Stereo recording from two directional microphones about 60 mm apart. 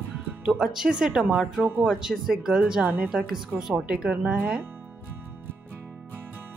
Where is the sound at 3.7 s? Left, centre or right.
Centre.